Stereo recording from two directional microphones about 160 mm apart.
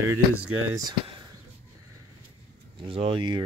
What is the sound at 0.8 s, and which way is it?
Speech, 30° right (ahead or behind).